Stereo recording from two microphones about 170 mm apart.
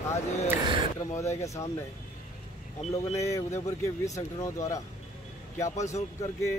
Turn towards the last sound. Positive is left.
turn(degrees=20)  # may be behind; listen again after turning